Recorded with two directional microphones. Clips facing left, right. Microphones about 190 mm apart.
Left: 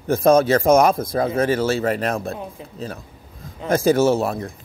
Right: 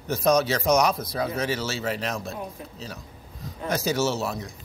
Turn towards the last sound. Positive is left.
turn(degrees=55)  # may be behind; listen again after turning